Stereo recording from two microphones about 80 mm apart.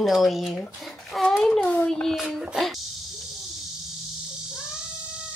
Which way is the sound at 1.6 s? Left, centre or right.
Centre.